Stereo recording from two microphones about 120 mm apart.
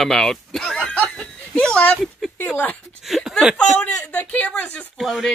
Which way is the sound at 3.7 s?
10° left (ahead or behind).